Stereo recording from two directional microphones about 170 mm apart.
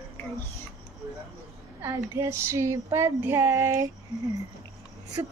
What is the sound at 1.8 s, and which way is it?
Female singing, 15° right (ahead or behind).